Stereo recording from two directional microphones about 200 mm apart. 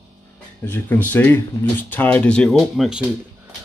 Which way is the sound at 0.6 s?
10° left (ahead or behind).